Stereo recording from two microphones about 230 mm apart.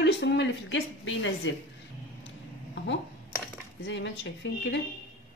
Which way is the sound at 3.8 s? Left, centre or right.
Left.